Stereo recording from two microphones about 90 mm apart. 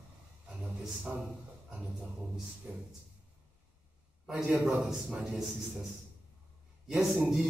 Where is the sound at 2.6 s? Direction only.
20° right (ahead or behind).